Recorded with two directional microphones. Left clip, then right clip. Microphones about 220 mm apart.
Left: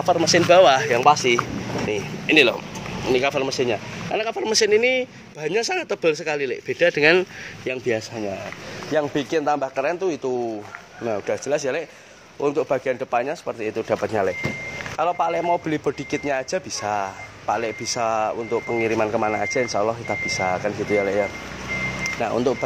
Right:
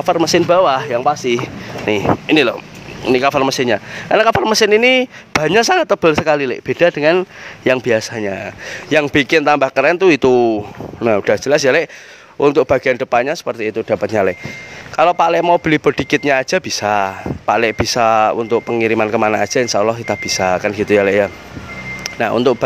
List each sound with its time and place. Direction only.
0.0 s speech: 45° right (ahead or behind)
0.5 s speech: 20° right (ahead or behind); by 2.3 s 40° right (ahead or behind)
2.3 s speech: 25° right (ahead or behind)
3.1 s speech: 35° right (ahead or behind)
7.6 s speech: 40° right (ahead or behind)